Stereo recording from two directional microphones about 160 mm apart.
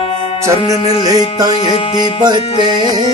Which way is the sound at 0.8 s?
20° right (ahead or behind).